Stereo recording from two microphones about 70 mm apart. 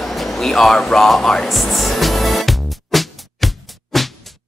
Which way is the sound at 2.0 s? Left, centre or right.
Centre.